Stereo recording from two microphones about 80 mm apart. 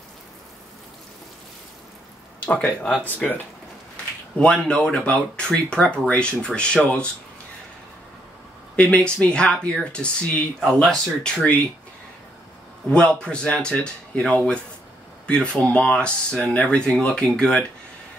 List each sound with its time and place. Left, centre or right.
2.4 s speech: centre
8.7 s speech: centre
12.9 s speech: centre